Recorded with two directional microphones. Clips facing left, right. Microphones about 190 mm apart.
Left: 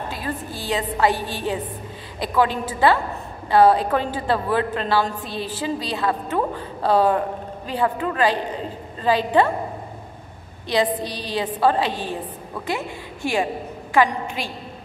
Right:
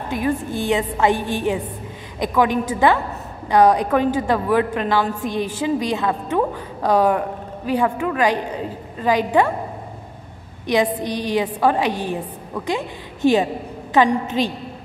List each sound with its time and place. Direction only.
0.1 s a woman's voice: 20° right (ahead or behind)
10.7 s a woman's voice: 15° right (ahead or behind)